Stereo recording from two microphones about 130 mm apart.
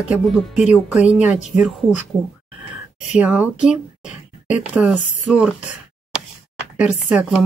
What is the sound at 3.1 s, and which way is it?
Speech, 10° right (ahead or behind).